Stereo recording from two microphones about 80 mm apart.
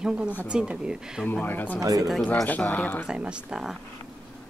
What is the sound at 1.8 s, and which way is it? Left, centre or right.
Speech, right.